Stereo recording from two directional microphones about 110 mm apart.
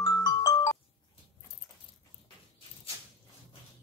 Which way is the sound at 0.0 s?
40° left (ahead or behind).